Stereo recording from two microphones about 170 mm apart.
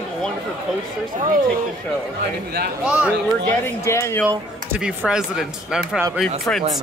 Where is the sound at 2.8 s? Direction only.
5° right (ahead or behind).